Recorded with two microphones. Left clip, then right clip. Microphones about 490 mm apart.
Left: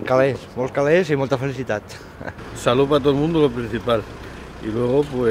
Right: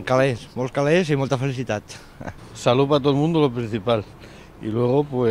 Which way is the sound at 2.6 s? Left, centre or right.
Right.